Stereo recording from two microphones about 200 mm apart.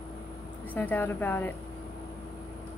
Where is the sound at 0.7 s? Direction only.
10° left (ahead or behind).